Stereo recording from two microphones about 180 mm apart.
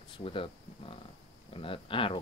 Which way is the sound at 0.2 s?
30° left (ahead or behind).